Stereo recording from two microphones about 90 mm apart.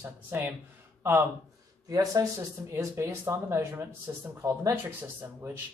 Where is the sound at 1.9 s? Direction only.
40° right (ahead or behind).